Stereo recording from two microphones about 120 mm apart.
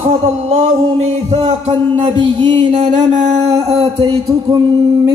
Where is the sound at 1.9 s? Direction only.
40° right (ahead or behind).